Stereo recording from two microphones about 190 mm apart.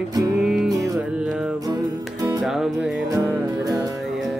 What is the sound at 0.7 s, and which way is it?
Music, 20° right (ahead or behind).